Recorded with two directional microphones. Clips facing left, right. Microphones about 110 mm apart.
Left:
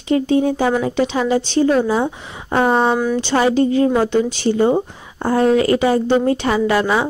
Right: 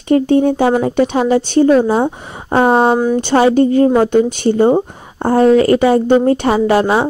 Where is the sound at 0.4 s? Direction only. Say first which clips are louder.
Right 4 dB; 30° right (ahead or behind).